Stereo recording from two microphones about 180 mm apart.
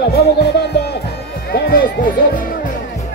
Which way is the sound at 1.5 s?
60° left (ahead or behind).